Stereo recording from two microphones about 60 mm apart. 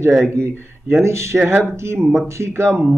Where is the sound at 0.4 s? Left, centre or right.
Right.